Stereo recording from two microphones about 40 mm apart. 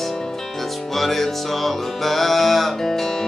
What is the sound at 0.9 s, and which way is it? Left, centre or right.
Music, centre.